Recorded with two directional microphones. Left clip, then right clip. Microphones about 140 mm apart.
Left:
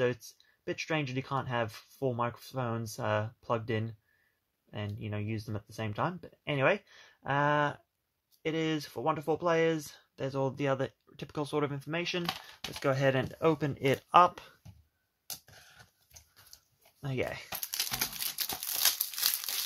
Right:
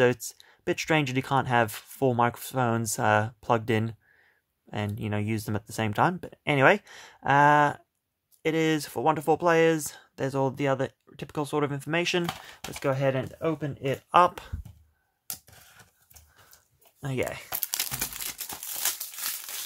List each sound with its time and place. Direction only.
0.0 s speech: 45° right (ahead or behind)
10.5 s speech: 25° right (ahead or behind)
11.8 s speech: 40° right (ahead or behind)
12.3 s speech: centre (ahead or behind)
13.4 s speech: 30° left (ahead or behind)
15.2 s a sound: 5° right (ahead or behind)
17.0 s speech: 15° right (ahead or behind)
17.8 s crumpling: 5° right (ahead or behind)
18.4 s crumpling: 65° left (ahead or behind)